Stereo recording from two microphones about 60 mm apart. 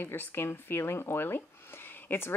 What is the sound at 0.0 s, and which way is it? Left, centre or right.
Speech, left.